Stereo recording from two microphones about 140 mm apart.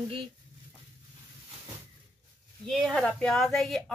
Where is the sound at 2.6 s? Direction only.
5° left (ahead or behind).